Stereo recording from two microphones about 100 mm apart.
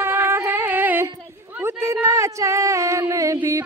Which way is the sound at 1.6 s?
25° right (ahead or behind).